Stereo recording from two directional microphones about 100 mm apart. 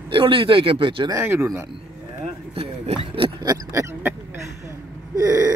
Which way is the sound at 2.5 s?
75° right (ahead or behind).